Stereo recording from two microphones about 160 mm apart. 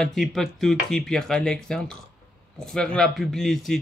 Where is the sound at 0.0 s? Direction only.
Centre (ahead or behind).